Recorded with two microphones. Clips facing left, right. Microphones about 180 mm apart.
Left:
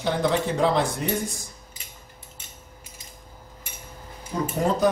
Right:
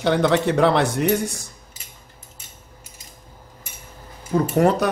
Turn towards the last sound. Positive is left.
turn(degrees=-70)  # may be behind; listen again after turning